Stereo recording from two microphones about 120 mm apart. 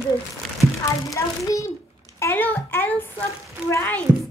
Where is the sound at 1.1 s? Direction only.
25° left (ahead or behind).